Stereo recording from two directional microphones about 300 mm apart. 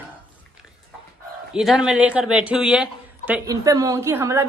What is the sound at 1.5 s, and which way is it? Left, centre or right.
A man's voice, centre.